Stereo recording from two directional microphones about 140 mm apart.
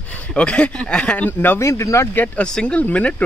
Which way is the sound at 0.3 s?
10° left (ahead or behind).